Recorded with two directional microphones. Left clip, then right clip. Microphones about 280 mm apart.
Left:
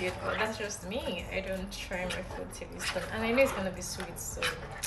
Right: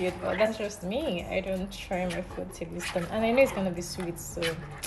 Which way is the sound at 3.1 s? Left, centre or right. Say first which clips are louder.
Right 4 dB; centre.